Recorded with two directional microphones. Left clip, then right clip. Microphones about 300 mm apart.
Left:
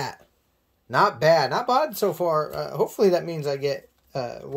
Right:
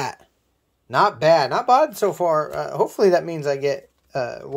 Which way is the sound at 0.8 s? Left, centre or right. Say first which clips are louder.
Right 2 dB; centre.